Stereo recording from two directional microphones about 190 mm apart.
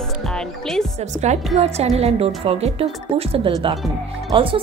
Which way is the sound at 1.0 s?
35° right (ahead or behind).